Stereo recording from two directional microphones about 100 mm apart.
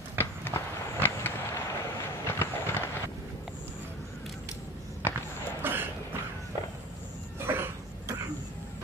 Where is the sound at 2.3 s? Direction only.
20° left (ahead or behind).